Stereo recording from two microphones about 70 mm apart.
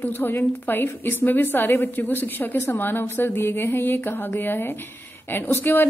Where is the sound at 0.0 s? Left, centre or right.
Left.